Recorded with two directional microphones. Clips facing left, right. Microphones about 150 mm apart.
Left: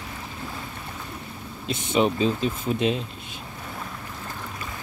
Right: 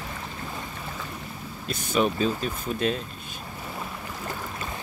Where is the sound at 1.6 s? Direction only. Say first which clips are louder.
Left 2 dB; 25° left (ahead or behind).